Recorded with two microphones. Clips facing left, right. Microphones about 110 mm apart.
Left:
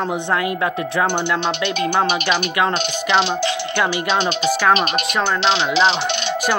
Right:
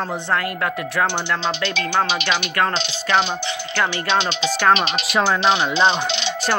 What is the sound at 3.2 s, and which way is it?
Speech, 85° left.